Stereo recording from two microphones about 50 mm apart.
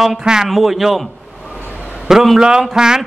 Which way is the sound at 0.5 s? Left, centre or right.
Centre.